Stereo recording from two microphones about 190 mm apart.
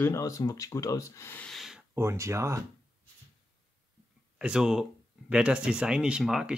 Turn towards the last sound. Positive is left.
turn(degrees=-5)  # may be behind; listen again after turning